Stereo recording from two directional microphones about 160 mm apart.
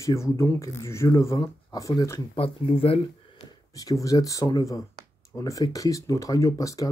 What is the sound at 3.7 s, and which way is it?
Speech, 20° left (ahead or behind).